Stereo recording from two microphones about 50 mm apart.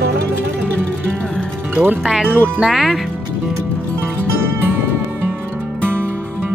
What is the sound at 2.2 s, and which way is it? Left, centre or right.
Speech, right.